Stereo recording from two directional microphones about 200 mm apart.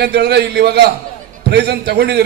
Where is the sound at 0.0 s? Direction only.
55° right (ahead or behind).